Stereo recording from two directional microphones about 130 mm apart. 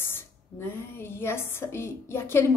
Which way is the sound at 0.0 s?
15° left (ahead or behind).